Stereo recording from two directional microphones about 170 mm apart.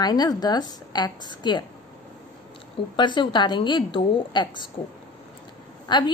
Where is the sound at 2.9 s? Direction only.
25° left (ahead or behind).